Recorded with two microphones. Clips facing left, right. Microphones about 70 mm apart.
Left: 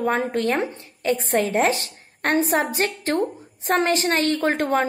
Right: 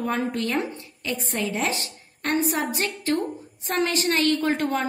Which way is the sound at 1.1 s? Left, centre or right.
Left.